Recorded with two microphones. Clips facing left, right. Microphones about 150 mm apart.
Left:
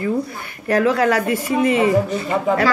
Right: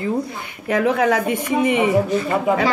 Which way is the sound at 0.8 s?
90° left.